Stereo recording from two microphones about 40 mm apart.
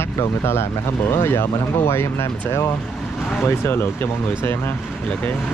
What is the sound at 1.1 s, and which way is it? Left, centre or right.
Speech, left.